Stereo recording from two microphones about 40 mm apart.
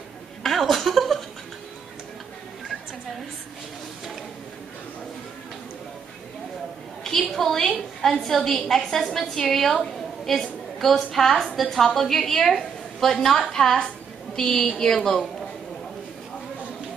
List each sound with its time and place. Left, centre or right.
0.4 s chuckle: centre
7.0 s a sound: centre
8.0 s a woman's voice: centre